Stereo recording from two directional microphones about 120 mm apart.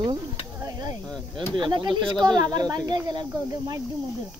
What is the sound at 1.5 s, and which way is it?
Speech, 40° right (ahead or behind).